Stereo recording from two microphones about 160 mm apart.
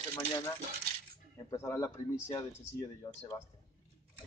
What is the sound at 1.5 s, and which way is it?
Speech, 20° left (ahead or behind).